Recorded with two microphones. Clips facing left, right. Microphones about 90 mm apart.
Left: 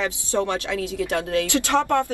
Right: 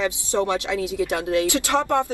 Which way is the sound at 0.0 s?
15° right (ahead or behind).